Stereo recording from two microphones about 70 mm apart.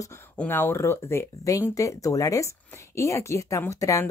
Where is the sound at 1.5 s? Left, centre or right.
Left.